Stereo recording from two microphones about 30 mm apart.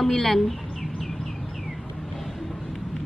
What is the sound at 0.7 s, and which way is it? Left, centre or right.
Bird, centre.